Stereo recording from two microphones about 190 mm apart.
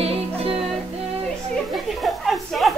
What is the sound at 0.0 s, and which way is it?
Music, 30° right (ahead or behind).